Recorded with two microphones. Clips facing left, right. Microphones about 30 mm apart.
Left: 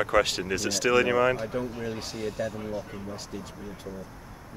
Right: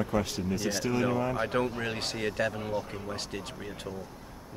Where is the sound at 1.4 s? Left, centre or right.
Right.